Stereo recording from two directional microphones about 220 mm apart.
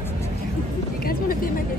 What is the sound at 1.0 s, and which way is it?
Vehicle, 40° left (ahead or behind).